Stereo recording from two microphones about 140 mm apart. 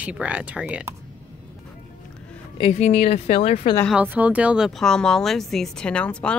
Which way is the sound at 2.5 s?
45° left (ahead or behind).